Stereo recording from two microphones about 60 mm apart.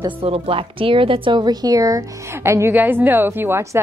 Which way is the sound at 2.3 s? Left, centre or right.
Right.